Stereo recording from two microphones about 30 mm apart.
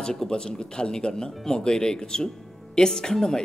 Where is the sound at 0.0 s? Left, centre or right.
Centre.